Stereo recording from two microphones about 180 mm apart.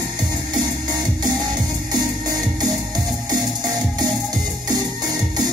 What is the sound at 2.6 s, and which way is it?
Music, 20° right (ahead or behind).